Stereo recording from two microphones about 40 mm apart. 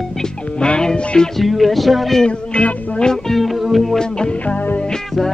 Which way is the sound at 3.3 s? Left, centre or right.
Centre.